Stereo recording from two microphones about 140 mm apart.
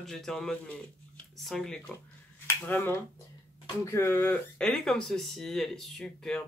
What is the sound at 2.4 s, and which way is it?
Speech, 15° left (ahead or behind).